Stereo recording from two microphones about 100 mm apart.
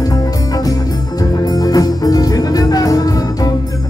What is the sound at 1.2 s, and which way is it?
Music, 35° left (ahead or behind).